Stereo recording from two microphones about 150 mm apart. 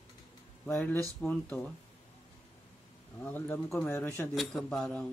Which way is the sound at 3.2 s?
15° left (ahead or behind).